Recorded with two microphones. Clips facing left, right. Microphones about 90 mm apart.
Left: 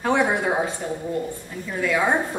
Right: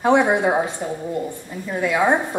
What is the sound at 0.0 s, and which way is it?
A woman's voice, 20° right (ahead or behind).